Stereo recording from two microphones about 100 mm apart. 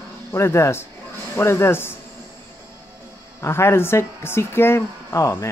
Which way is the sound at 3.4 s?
25° left (ahead or behind).